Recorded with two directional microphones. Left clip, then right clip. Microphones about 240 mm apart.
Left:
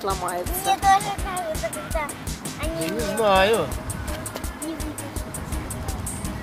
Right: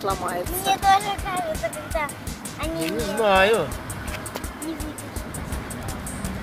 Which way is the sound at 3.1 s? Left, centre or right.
Centre.